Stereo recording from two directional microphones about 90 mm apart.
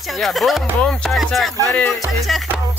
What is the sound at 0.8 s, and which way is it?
Speech, 10° left (ahead or behind).